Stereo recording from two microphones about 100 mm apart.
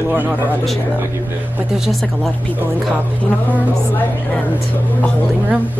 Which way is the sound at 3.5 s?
15° left (ahead or behind).